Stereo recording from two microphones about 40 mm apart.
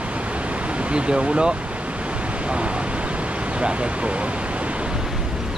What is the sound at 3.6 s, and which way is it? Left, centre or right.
Speech, right.